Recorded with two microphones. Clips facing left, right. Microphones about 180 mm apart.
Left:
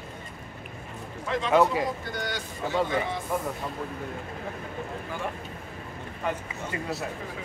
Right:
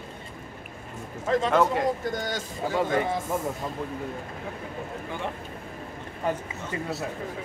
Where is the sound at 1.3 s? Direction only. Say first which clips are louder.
Even; 40° right (ahead or behind).